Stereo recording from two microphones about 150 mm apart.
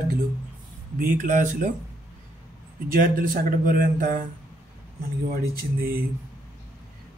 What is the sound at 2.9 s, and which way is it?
Speech, 65° right (ahead or behind).